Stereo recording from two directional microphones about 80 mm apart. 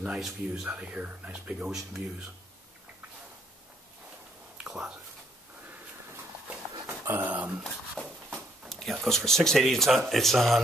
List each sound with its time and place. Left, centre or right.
0.0 s speech: centre
4.6 s speech: centre
6.9 s dog: right
8.0 s a sound: centre
8.6 s speech: centre